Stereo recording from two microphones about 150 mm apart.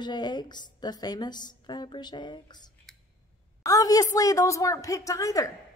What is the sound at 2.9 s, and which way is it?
Scissors, centre (ahead or behind).